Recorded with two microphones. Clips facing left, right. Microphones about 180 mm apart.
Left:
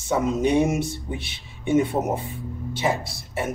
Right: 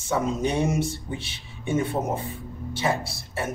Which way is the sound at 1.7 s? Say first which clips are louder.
Left 4 dB; 15° left (ahead or behind).